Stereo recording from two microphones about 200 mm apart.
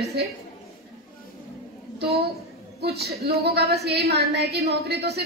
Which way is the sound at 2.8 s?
55° right (ahead or behind).